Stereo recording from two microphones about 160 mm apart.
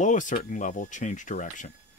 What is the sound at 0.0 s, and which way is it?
Speech, 50° left (ahead or behind).